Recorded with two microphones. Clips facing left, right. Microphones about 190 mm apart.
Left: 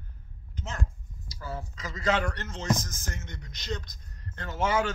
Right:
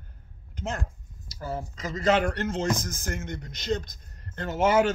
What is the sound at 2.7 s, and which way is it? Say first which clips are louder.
Speech: right 4 dB; 55° right (ahead or behind).